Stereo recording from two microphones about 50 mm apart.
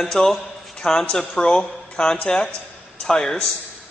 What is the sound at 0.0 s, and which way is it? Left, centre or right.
A man's voice, centre.